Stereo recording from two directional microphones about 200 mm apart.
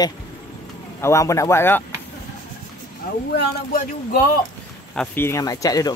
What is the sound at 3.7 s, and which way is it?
Speech, 45° left (ahead or behind).